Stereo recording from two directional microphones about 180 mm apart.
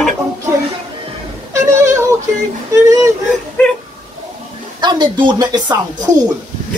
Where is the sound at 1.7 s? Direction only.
40° right (ahead or behind).